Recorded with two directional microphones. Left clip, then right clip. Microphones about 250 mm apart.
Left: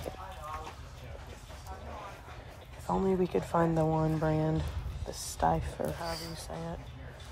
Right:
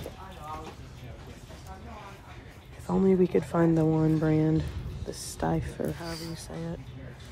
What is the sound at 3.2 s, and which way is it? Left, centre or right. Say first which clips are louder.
Speech: right 4 dB; centre.